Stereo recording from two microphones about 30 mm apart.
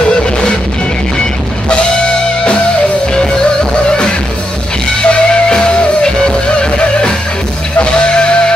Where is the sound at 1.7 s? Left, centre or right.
Left.